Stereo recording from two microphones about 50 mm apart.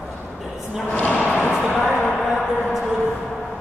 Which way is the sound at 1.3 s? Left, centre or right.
Left.